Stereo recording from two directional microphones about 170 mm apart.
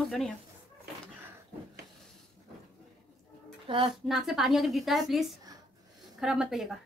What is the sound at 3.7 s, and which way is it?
Speech, 30° right (ahead or behind).